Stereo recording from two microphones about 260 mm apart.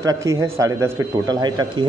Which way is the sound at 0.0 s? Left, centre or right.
Centre.